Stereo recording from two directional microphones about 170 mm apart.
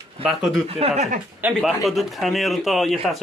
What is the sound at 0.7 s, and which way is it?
Speech, 35° right (ahead or behind).